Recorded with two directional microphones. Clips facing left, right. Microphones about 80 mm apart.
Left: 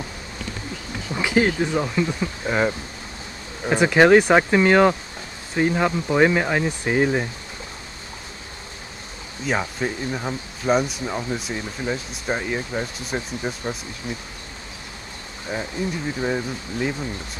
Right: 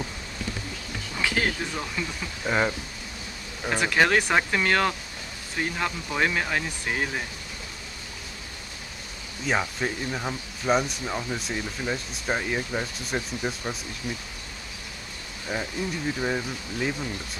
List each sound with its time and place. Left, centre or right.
1.1 s speech: centre
2.4 s speech: centre
3.6 s speech: left
9.5 s speech: centre
14.0 s speech: left
15.5 s speech: left
16.2 s speech: centre